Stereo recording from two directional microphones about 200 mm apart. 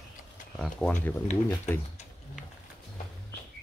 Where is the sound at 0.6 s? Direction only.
5° left (ahead or behind).